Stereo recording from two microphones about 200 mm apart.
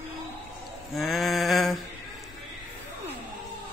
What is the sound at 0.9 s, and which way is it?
Mantra, centre (ahead or behind).